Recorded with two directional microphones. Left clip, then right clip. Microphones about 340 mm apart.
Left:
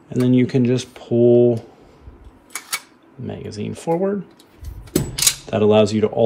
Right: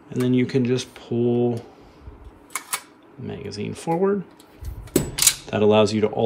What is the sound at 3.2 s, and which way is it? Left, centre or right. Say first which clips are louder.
Speech: left 2 dB; centre.